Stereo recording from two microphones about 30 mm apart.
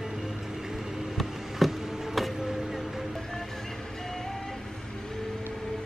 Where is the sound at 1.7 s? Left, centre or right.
Centre.